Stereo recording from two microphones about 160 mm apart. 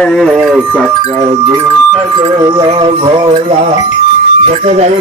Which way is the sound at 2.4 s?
35° right (ahead or behind).